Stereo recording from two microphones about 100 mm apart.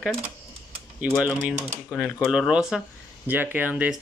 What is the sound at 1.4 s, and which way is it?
Speech, 10° right (ahead or behind).